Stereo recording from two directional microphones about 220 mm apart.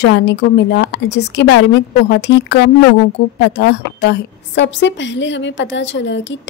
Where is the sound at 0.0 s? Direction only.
55° left (ahead or behind).